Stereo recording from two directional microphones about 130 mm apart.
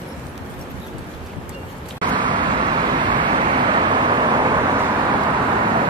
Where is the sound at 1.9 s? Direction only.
35° right (ahead or behind).